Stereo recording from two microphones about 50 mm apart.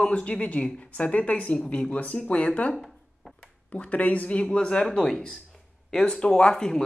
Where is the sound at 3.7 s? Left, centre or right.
Left.